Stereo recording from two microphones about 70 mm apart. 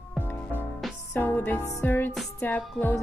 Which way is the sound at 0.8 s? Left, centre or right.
Centre.